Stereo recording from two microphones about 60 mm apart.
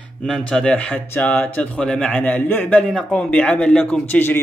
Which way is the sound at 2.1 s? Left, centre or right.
Left.